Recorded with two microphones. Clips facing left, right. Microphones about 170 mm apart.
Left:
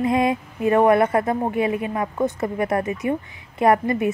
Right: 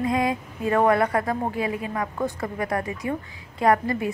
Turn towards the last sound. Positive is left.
turn(degrees=20)  # may be behind; listen again after turning